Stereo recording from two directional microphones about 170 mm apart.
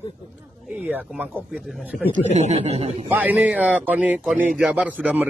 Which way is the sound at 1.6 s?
Centre (ahead or behind).